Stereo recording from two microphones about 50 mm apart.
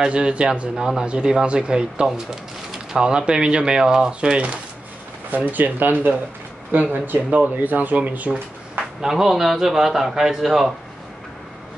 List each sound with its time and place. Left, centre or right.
0.0 s speech: right
5.3 s speech: right
9.0 s speech: centre